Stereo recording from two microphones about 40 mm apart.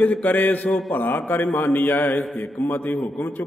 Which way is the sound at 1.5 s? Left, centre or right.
Left.